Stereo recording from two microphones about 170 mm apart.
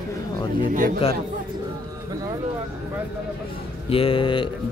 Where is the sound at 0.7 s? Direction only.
50° right (ahead or behind).